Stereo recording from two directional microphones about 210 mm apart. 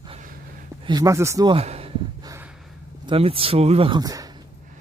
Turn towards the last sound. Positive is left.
turn(degrees=-15)  # may be behind; listen again after turning